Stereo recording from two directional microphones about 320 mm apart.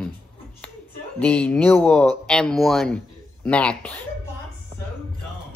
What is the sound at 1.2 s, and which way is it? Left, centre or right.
Speech, centre.